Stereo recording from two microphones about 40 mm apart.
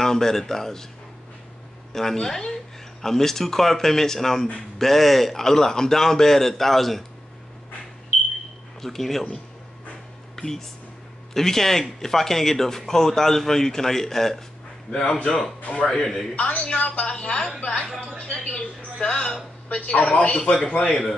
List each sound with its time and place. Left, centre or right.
0.0 s speech: centre
1.9 s speech: centre
8.8 s speech: centre
10.3 s a sound: centre
11.3 s speech: centre
14.9 s a woman's voice: left
15.2 s speech: centre
16.3 s a woman's voice: left
20.3 s a woman's voice: left